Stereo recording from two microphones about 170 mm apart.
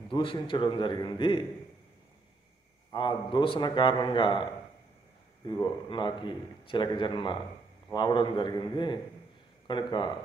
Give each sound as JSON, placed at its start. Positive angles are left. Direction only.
{"t": 0.1, "sound": "a man's voice", "side_deg": 30}
{"t": 2.9, "sound": "a man's voice", "side_deg": 30}
{"t": 5.5, "sound": "a man's voice", "side_deg": 25}